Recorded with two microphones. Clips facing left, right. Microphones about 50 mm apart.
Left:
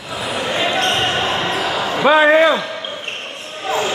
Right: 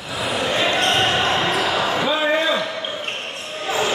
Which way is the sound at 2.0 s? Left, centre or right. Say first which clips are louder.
Left 13 dB; left.